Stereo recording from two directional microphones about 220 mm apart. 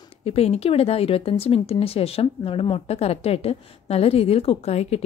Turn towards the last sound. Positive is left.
turn(degrees=30)  # may be behind; listen again after turning